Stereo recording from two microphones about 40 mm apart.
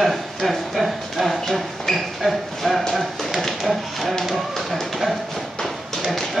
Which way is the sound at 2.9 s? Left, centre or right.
Centre.